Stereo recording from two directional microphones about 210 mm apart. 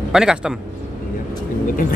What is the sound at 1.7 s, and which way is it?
Speech, 40° left (ahead or behind).